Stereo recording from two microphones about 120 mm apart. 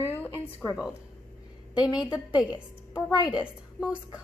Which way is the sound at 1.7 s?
5° right (ahead or behind).